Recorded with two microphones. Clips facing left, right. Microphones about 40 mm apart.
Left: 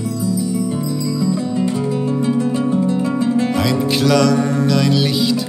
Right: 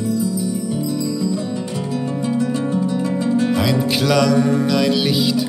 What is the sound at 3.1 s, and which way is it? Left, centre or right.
Music, left.